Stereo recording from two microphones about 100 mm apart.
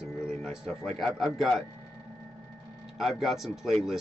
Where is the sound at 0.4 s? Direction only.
5° right (ahead or behind).